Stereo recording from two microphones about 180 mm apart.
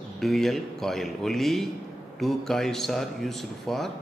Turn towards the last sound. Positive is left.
turn(degrees=0)  # may be behind; listen again after turning